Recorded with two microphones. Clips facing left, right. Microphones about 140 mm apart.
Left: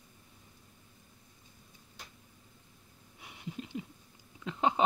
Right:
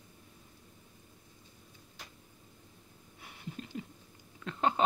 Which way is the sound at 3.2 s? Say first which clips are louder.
Left 2 dB; 10° left (ahead or behind).